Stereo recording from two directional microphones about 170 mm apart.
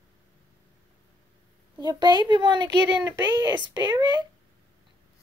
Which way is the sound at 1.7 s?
25° right (ahead or behind).